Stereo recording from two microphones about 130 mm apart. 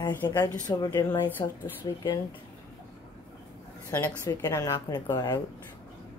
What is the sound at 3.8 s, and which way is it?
A woman's voice, 20° left (ahead or behind).